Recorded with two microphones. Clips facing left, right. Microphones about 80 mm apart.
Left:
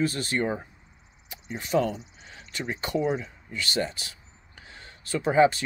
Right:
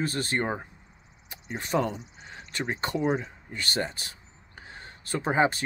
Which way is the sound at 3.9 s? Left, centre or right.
Right.